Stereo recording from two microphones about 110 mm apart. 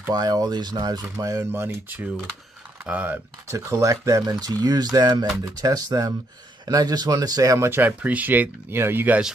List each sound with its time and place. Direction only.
0.1 s speech: 35° right (ahead or behind)
1.5 s speech: 20° right (ahead or behind)
3.4 s speech: 30° right (ahead or behind)